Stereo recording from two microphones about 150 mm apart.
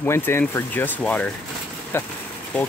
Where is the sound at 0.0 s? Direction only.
15° left (ahead or behind).